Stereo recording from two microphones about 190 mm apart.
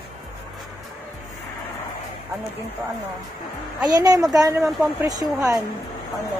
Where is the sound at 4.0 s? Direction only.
20° right (ahead or behind).